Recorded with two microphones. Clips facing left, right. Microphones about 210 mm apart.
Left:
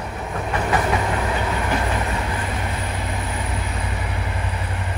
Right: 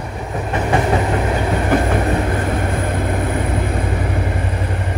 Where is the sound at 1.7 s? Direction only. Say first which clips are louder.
Right 7 dB; 50° right (ahead or behind).